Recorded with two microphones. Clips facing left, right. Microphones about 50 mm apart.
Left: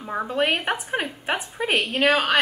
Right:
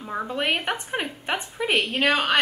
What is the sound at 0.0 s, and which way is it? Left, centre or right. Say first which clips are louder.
A woman's voice: left 3 dB; centre.